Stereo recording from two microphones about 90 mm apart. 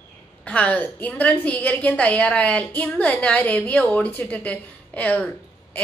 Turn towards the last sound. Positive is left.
turn(degrees=15)  # may be behind; listen again after turning